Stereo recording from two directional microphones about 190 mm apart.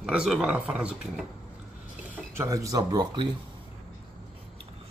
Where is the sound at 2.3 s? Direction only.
15° right (ahead or behind).